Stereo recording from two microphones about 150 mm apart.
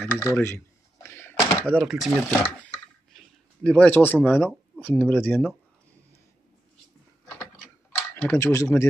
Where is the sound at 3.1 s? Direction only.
Centre (ahead or behind).